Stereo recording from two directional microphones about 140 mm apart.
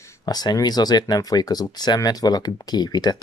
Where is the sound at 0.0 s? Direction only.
25° left (ahead or behind).